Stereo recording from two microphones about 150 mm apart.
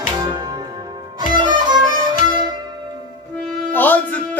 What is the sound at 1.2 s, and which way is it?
Music, 30° right (ahead or behind).